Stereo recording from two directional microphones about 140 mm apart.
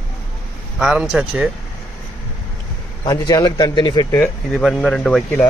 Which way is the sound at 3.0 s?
30° left (ahead or behind).